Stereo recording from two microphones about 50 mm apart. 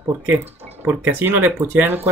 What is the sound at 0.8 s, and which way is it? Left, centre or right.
Speech, right.